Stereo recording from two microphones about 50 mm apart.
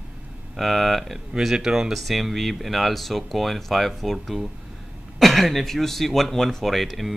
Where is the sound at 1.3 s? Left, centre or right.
Centre.